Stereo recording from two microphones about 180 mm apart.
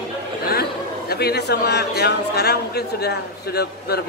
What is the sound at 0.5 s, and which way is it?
A man's voice, 60° left (ahead or behind).